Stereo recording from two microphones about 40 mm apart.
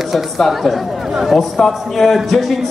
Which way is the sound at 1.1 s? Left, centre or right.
Centre.